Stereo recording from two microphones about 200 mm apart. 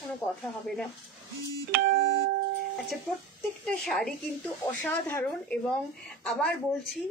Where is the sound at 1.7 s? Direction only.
55° right (ahead or behind).